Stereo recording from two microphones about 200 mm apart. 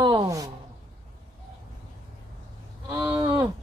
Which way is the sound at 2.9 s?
10° right (ahead or behind).